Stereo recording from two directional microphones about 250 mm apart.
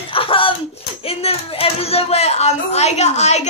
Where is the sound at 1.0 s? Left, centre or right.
Left.